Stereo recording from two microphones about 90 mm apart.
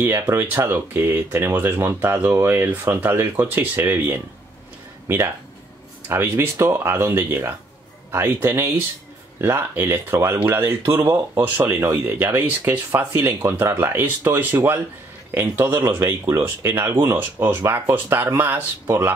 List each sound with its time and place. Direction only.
0.0 s speech: 25° right (ahead or behind)
15.8 s speech: 35° right (ahead or behind)